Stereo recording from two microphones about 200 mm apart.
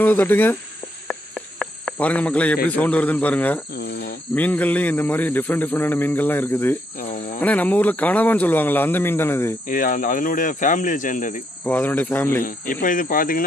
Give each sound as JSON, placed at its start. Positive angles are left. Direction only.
{"t": 0.0, "sound": "speech", "side_deg": 10}
{"t": 3.7, "sound": "speech", "side_deg": 55}
{"t": 4.4, "sound": "speech", "side_deg": 10}
{"t": 9.7, "sound": "speech", "side_deg": 45}
{"t": 11.6, "sound": "speech", "side_deg": 10}
{"t": 12.8, "sound": "speech", "side_deg": 40}